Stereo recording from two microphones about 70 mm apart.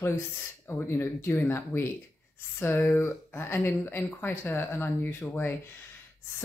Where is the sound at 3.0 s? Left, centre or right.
Left.